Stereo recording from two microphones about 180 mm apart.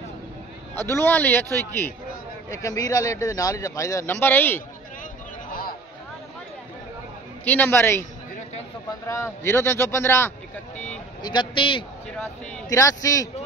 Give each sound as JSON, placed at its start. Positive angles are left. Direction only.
{"t": 0.7, "sound": "speech", "side_deg": 15}
{"t": 7.4, "sound": "speech", "side_deg": 10}
{"t": 9.0, "sound": "speech", "side_deg": 15}
{"t": 11.2, "sound": "a man's voice", "side_deg": 25}